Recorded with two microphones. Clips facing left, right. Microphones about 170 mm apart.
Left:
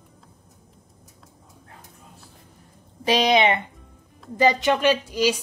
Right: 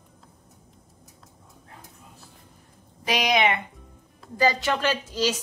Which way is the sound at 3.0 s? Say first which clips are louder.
Left 4 dB; 30° left (ahead or behind).